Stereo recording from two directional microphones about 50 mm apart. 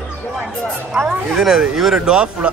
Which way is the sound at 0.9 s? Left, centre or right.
Centre.